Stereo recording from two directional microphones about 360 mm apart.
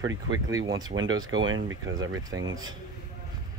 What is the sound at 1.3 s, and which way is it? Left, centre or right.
Speech, right.